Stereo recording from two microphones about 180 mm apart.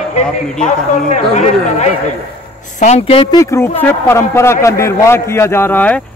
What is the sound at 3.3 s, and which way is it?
Speech, 15° left (ahead or behind).